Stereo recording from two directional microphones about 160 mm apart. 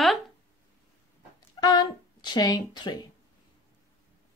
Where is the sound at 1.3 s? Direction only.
25° left (ahead or behind).